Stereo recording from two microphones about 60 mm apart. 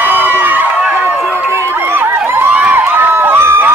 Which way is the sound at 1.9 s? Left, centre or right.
Right.